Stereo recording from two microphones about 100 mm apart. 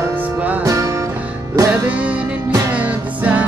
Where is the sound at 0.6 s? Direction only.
35° right (ahead or behind).